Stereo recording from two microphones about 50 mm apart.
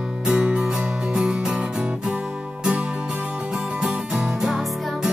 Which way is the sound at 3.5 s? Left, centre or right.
Centre.